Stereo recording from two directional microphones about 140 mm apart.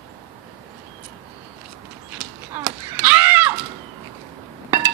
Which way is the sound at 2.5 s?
15° right (ahead or behind).